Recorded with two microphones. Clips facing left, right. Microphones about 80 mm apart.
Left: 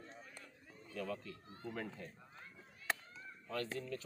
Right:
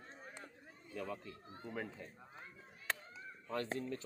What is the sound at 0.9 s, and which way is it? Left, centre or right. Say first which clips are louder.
A man's voice: left 1 dB; centre.